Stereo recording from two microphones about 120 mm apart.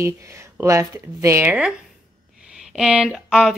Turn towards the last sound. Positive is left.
turn(degrees=0)  # may be behind; listen again after turning